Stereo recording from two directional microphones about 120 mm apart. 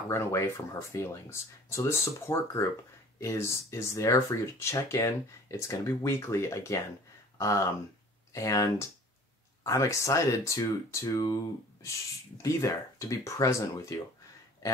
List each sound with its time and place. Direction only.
0.1 s speech: 25° left (ahead or behind)
12.4 s speech: 25° left (ahead or behind)
14.6 s a sound: 30° left (ahead or behind)